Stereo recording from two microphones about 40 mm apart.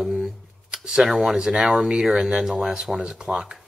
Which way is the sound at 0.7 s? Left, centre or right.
Centre.